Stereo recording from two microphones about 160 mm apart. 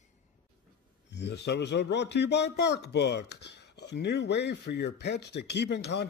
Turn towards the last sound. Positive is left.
turn(degrees=90)